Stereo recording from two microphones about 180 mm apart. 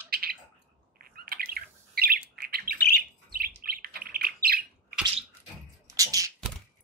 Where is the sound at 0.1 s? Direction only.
60° right (ahead or behind).